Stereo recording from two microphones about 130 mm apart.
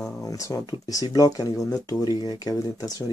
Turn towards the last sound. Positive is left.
turn(degrees=30)  # may be behind; listen again after turning